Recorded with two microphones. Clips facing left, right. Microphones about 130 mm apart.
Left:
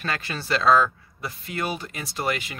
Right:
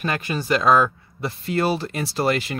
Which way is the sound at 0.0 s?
15° right (ahead or behind).